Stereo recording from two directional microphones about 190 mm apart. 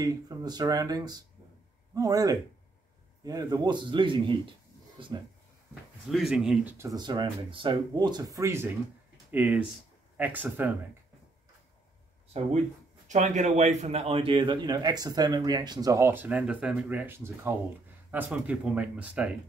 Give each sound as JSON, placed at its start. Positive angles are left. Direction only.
{"t": 0.0, "sound": "a man's voice", "side_deg": -20}
{"t": 6.0, "sound": "speech", "side_deg": 0}
{"t": 13.1, "sound": "a man's voice", "side_deg": -40}